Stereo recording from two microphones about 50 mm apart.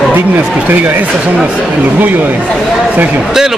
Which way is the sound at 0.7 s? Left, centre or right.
Right.